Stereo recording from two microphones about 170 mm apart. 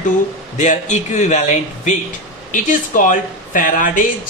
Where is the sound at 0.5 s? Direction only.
45° left (ahead or behind).